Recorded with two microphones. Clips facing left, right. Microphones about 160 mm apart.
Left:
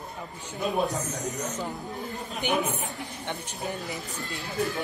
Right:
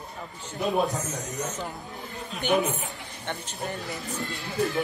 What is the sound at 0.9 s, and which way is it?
Speech, 10° left (ahead or behind).